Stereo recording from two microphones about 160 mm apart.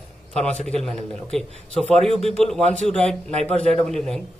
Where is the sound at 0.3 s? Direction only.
5° left (ahead or behind).